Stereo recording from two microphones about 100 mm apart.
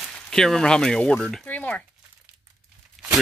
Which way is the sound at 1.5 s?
15° left (ahead or behind).